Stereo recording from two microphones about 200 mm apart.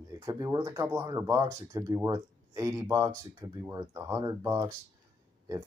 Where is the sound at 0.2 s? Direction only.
15° right (ahead or behind).